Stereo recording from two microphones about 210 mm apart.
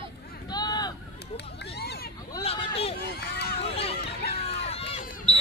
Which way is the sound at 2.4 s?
25° left (ahead or behind).